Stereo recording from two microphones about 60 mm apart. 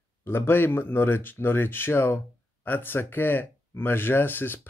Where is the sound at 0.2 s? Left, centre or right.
Left.